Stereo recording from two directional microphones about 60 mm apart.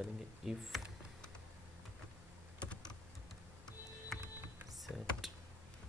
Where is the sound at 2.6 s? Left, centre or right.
Centre.